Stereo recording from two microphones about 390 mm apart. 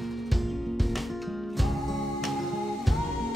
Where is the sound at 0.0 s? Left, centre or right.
Centre.